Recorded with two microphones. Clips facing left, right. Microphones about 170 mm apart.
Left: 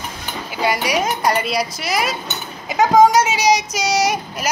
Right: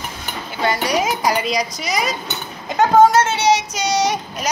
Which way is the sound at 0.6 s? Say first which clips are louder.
Even; 10° left (ahead or behind).